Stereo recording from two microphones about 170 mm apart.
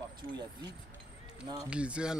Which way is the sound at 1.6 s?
5° right (ahead or behind).